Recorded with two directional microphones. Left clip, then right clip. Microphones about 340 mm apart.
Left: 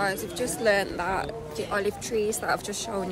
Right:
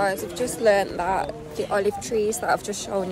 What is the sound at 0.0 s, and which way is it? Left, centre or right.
Speech, centre.